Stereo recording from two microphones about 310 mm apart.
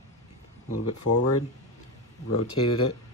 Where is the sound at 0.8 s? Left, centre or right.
Left.